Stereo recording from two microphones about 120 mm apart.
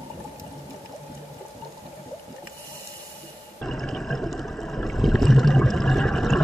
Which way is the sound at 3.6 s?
5° left (ahead or behind).